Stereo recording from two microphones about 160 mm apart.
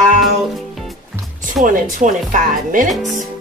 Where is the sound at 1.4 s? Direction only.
55° right (ahead or behind).